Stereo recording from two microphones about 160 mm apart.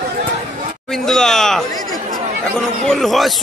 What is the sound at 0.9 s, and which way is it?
A man's voice, 5° left (ahead or behind).